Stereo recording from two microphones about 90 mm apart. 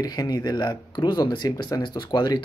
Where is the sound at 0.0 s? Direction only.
50° left (ahead or behind).